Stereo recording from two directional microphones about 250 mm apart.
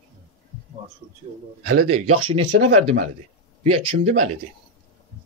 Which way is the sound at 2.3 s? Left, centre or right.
Right.